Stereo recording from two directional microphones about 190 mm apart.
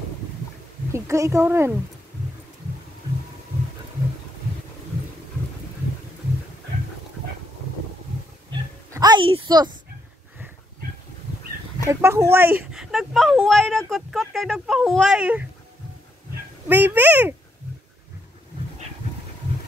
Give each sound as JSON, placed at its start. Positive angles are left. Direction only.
{"t": 0.9, "sound": "a woman's voice", "side_deg": -15}
{"t": 8.5, "sound": "a sound", "side_deg": -20}
{"t": 11.9, "sound": "a woman's voice", "side_deg": -15}
{"t": 16.6, "sound": "a woman's voice", "side_deg": -10}